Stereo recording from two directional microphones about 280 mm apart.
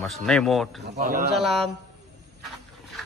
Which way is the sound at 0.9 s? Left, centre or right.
Right.